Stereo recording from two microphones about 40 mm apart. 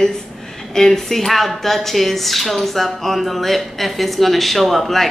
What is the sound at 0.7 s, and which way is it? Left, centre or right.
Speech, centre.